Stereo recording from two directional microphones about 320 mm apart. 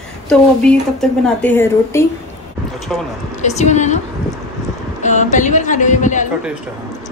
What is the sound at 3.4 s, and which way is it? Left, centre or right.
Speech, left.